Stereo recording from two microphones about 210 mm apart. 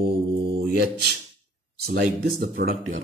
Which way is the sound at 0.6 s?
50° right (ahead or behind).